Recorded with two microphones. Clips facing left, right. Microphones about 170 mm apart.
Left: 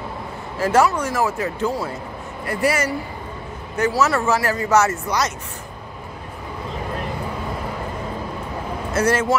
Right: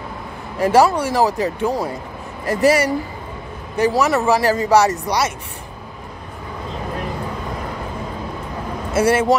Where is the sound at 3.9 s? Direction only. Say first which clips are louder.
Right 1 dB; 15° right (ahead or behind).